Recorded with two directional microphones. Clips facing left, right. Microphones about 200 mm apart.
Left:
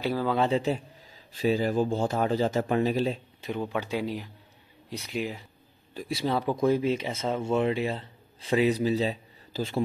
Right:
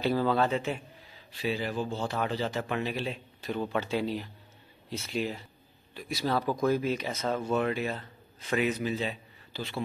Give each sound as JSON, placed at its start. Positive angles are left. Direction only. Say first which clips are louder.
{"t": 0.0, "sound": "speech", "louder": "right 1 dB", "side_deg": 10}
{"t": 0.4, "sound": "a man's voice", "louder": "left 3 dB", "side_deg": 35}
{"t": 3.4, "sound": "speech", "louder": "even", "side_deg": 15}
{"t": 5.9, "sound": "speech", "louder": "left 2 dB", "side_deg": 30}